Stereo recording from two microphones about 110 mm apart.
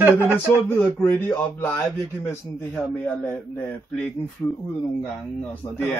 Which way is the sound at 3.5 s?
10° left (ahead or behind).